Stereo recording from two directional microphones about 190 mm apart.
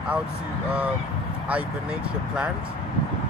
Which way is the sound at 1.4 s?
5° right (ahead or behind).